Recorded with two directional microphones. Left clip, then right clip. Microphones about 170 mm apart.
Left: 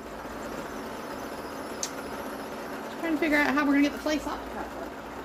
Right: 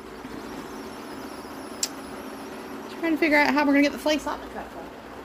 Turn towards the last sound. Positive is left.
turn(degrees=-50)  # may be behind; listen again after turning